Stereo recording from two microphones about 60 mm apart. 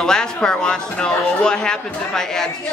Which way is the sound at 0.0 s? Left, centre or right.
Centre.